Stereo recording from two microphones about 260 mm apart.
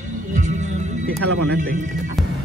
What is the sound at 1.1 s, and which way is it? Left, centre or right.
Speech, right.